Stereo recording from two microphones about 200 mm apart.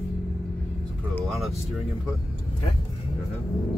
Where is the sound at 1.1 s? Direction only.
Centre (ahead or behind).